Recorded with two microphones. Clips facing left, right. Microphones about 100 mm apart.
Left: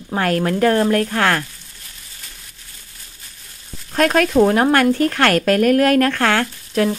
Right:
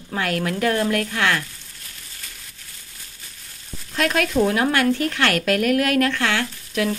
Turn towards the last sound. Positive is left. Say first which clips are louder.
# left 5 dB
turn(degrees=45)  # may be behind; listen again after turning